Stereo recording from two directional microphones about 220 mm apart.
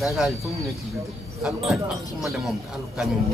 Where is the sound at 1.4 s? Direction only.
Centre (ahead or behind).